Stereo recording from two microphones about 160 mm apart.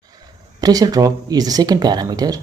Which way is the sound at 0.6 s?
25° right (ahead or behind).